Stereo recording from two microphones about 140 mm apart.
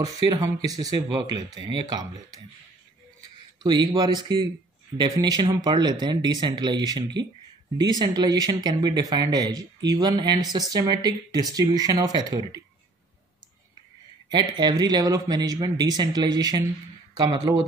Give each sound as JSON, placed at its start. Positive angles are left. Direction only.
{"t": 0.0, "sound": "speech", "side_deg": -30}
{"t": 3.6, "sound": "speech", "side_deg": -30}
{"t": 14.3, "sound": "speech", "side_deg": -30}